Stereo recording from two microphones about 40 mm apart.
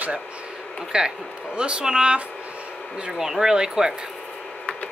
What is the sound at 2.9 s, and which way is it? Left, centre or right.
Speech, centre.